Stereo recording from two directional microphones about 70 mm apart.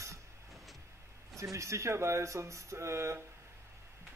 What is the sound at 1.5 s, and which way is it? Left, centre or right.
Speech, right.